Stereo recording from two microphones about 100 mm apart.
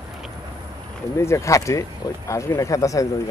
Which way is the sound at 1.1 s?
30° left (ahead or behind).